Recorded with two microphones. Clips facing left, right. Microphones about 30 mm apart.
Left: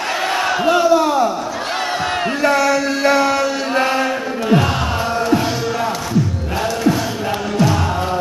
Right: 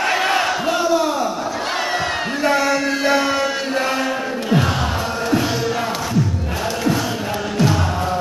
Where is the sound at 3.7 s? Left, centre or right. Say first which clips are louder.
Left 5 dB; centre.